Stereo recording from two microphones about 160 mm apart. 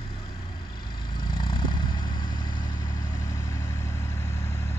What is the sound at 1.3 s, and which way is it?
Vehicle, 30° left (ahead or behind).